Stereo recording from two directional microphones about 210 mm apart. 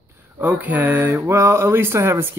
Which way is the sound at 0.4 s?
10° right (ahead or behind).